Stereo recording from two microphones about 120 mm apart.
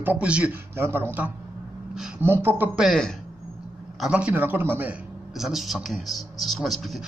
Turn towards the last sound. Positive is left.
turn(degrees=0)  # may be behind; listen again after turning